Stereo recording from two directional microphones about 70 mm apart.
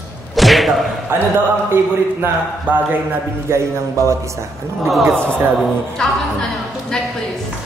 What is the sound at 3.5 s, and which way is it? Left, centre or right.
Speech, right.